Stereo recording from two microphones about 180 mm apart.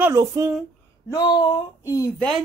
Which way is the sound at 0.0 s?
20° right (ahead or behind).